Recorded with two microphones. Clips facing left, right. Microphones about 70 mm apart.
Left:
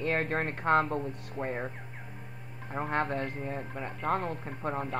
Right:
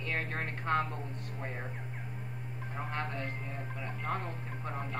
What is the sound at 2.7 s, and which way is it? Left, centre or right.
Speech, left.